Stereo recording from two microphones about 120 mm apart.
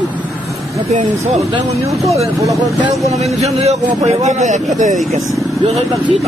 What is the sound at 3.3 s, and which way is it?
A man's voice, 65° right (ahead or behind).